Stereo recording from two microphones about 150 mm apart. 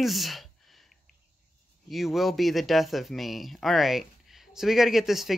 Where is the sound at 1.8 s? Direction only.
Centre (ahead or behind).